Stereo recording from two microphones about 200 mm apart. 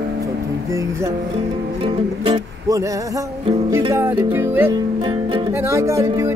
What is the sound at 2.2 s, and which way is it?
Speech, 25° right (ahead or behind).